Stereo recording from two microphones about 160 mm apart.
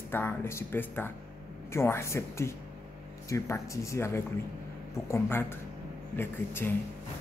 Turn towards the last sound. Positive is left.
turn(degrees=15)  # may be behind; listen again after turning